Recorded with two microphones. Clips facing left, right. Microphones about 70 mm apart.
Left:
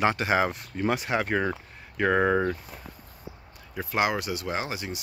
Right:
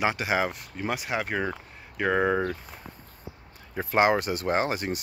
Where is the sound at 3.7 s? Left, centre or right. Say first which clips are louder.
Right 4 dB; right.